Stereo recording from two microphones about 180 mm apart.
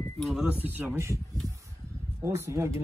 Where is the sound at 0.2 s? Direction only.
5° right (ahead or behind).